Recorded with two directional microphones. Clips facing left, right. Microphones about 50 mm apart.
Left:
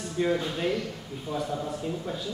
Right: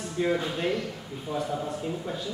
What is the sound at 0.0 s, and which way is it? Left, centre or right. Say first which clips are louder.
Speech: even; centre.